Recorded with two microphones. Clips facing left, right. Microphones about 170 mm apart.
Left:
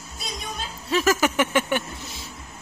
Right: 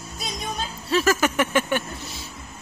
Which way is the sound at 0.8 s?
15° left (ahead or behind).